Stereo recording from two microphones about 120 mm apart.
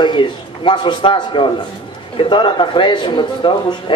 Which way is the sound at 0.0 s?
40° left (ahead or behind).